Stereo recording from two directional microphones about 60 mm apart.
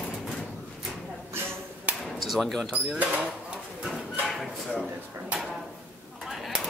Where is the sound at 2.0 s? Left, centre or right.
Centre.